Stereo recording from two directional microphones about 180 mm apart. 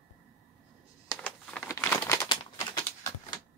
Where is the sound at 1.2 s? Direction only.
10° left (ahead or behind).